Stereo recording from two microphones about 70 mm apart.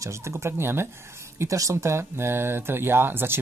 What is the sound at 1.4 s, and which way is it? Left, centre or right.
Speech, right.